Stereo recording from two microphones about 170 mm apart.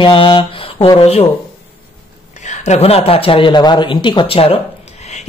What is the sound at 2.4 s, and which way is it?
Speech, 40° left (ahead or behind).